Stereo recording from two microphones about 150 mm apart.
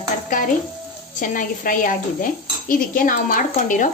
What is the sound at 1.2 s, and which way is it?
Speech, 60° left (ahead or behind).